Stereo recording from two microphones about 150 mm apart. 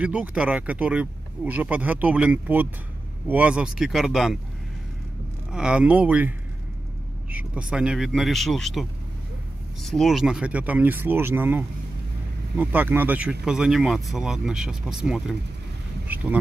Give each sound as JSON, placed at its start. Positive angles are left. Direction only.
{"t": 0.0, "sound": "speech", "side_deg": -10}
{"t": 5.5, "sound": "speech", "side_deg": -5}